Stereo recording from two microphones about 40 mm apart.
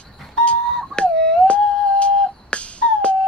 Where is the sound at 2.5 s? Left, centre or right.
Left.